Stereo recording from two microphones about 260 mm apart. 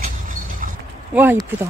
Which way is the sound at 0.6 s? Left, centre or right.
Right.